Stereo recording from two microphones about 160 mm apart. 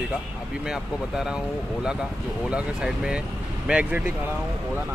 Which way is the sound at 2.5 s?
5° right (ahead or behind).